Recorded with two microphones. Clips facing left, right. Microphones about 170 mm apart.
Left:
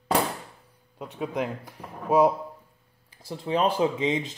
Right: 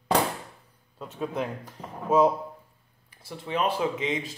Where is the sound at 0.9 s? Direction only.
15° left (ahead or behind).